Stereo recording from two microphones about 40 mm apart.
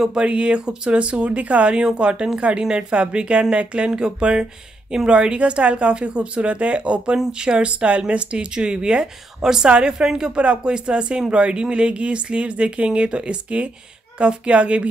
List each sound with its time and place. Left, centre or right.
0.2 s speech: right
1.8 s speech: right
10.3 s speech: right